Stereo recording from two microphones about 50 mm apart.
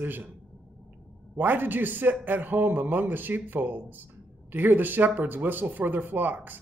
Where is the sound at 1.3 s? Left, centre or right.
Right.